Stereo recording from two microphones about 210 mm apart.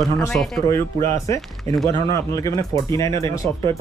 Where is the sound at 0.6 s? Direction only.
15° left (ahead or behind).